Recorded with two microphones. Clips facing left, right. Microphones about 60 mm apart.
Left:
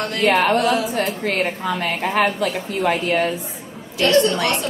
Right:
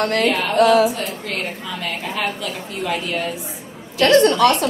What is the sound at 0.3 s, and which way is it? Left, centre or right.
Speech, left.